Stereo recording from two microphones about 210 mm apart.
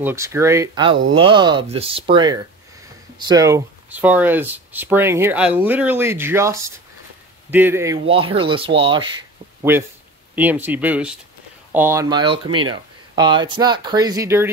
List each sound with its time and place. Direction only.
0.0 s speech: 10° right (ahead or behind)
8.0 s speech: 25° right (ahead or behind)
9.6 s speech: 10° right (ahead or behind)